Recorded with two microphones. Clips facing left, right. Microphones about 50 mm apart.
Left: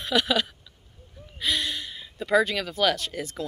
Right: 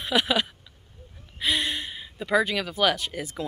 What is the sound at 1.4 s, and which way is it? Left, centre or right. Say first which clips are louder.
Speech: right 2 dB; right.